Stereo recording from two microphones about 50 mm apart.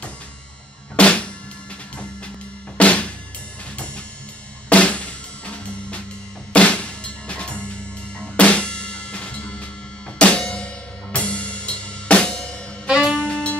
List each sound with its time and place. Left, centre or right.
0.9 s music: left
2.8 s music: left
4.6 s drum kit: left
8.2 s music: left
12.8 s saxophone: centre
13.2 s saxophone: left